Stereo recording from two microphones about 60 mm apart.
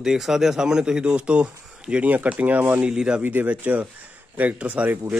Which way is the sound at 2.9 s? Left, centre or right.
Centre.